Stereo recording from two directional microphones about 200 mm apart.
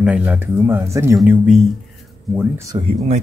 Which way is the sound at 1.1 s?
Centre (ahead or behind).